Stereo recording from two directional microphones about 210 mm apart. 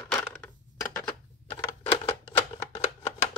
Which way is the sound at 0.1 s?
5° left (ahead or behind).